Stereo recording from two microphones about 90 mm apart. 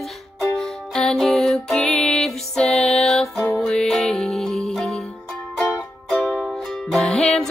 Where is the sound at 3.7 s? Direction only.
5° left (ahead or behind).